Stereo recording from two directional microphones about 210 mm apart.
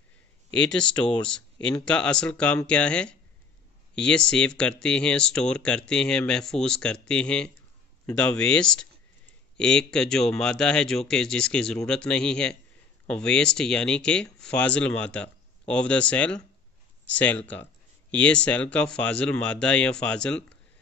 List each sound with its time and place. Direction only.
0.5 s speech: 5° left (ahead or behind)